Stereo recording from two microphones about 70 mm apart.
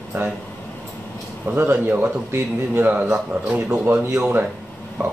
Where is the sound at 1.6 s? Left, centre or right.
Right.